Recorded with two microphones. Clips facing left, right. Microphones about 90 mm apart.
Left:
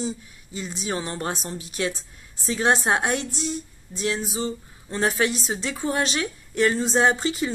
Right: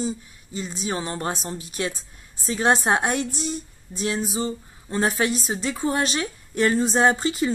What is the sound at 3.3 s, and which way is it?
Speech, 45° right (ahead or behind).